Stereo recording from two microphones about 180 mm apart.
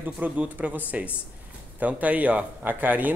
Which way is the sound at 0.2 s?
10° right (ahead or behind).